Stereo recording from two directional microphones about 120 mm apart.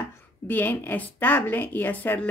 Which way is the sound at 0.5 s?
15° left (ahead or behind).